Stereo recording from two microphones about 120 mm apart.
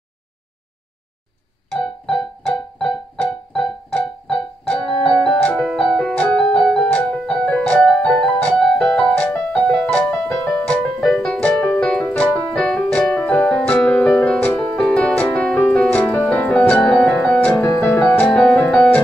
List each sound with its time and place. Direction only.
1.8 s keyboard: 5° left (ahead or behind)
4.7 s keyboard: 40° left (ahead or behind)
5.1 s keyboard: 5° left (ahead or behind)
14.8 s music: 10° left (ahead or behind)